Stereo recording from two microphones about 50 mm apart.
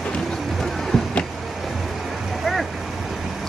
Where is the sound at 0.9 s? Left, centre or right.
Centre.